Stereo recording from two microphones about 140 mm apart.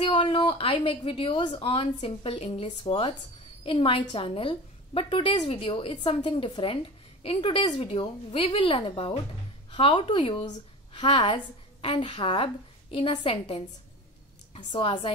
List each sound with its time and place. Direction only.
0.0 s a woman's voice: 40° left (ahead or behind)
14.7 s a woman's voice: 35° left (ahead or behind)